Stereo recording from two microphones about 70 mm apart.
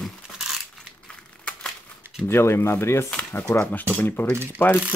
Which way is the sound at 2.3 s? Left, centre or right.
Left.